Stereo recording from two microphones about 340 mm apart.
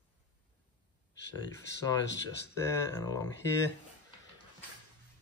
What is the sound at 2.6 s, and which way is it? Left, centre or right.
Speech, centre.